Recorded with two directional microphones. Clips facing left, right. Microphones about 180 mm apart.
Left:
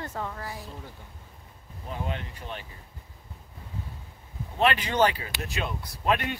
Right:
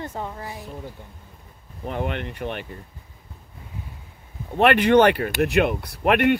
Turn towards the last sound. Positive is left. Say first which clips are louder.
# right 9 dB
turn(degrees=-65)  # may be behind; listen again after turning